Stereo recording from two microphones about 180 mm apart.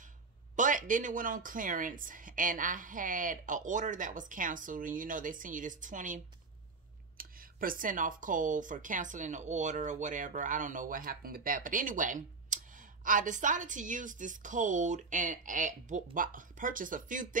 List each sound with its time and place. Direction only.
0.6 s speech: 45° right (ahead or behind)